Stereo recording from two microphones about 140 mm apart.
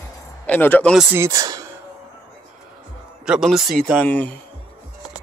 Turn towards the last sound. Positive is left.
turn(degrees=10)  # may be behind; listen again after turning